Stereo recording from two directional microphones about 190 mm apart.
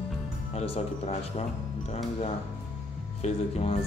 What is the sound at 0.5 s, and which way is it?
Speech, 30° left (ahead or behind).